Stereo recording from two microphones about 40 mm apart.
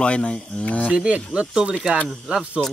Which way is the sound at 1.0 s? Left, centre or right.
Right.